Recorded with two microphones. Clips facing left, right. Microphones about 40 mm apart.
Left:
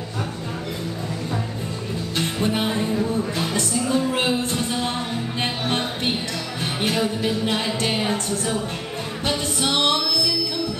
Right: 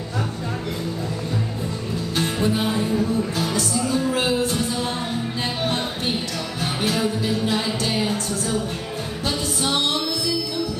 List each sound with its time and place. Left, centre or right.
2.4 s music: left